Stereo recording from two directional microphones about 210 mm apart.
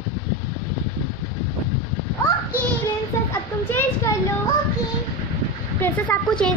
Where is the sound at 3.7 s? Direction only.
10° left (ahead or behind).